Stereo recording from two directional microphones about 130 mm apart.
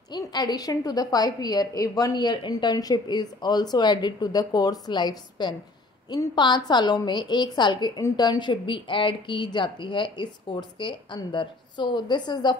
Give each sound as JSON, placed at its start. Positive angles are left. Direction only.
{"t": 0.1, "sound": "a woman's voice", "side_deg": 30}